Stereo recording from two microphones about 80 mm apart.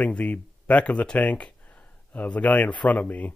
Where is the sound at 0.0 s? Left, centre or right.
Centre.